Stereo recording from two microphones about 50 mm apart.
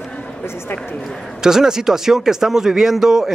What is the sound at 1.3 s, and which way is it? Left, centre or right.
Speech, centre.